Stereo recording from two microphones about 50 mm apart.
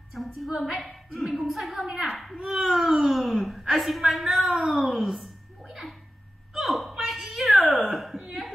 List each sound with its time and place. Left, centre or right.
0.1 s a woman's voice: centre
0.5 s a child's voice: centre
0.8 s a woman's voice: centre
2.3 s a child's voice: centre
4.5 s a child's voice: centre
4.8 s a child's voice: centre
6.5 s hiccup: centre
8.0 s a sound: centre